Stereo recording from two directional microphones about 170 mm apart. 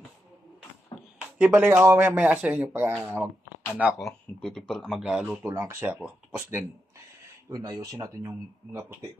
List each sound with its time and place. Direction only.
1.4 s speech: 5° right (ahead or behind)